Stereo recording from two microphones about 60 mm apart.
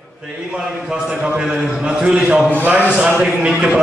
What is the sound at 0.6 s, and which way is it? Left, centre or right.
A man's voice, centre.